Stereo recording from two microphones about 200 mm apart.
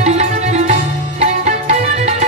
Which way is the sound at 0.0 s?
35° right (ahead or behind).